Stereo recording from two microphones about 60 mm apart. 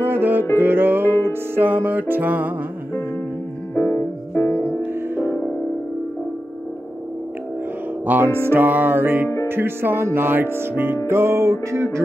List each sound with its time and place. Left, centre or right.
0.0 s music: right
3.7 s music: left
5.0 s music: right
8.1 s music: right